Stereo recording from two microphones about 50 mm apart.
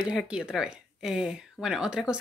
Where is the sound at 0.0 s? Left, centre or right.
Centre.